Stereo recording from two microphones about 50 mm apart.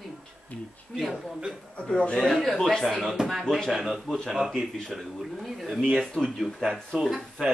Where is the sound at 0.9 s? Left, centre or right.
Centre.